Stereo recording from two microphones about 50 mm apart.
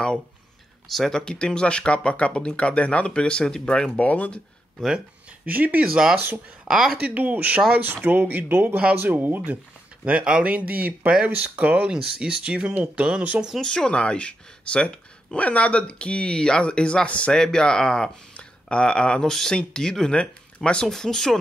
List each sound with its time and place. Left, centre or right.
0.8 s speech: centre
4.1 s speech: left
5.5 s speech: right
6.7 s speech: centre
7.0 s speech: right
10.0 s speech: right
11.9 s speech: centre
13.6 s speech: centre
17.3 s speech: centre